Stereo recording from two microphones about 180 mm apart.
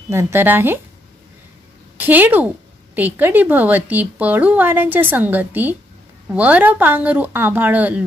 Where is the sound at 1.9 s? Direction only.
10° right (ahead or behind).